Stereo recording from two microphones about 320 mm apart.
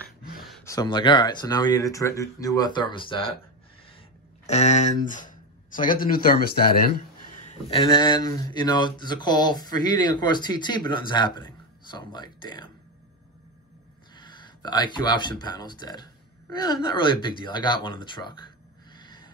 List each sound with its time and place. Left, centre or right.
0.4 s speech: centre
4.5 s speech: left
7.4 s speech: centre
14.1 s speech: centre
18.9 s gasp: centre